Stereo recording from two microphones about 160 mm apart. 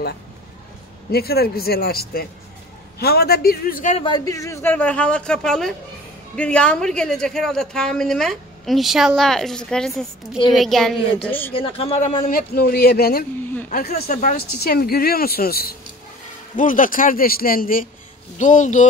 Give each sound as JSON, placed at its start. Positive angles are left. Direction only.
{"t": 1.1, "sound": "a woman's voice", "side_deg": 75}
{"t": 4.0, "sound": "a man's voice", "side_deg": 25}
{"t": 11.5, "sound": "a woman's voice", "side_deg": 35}
{"t": 16.5, "sound": "speech", "side_deg": 55}
{"t": 18.4, "sound": "speech", "side_deg": 50}